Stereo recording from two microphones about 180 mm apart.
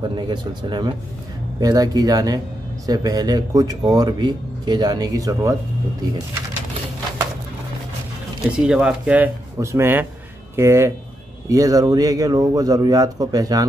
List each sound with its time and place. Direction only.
0.1 s speech: 25° right (ahead or behind)
8.5 s speech: 5° right (ahead or behind); by 13.7 s 20° right (ahead or behind)